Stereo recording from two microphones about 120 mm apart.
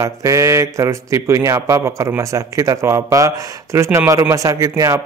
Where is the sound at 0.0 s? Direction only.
25° right (ahead or behind).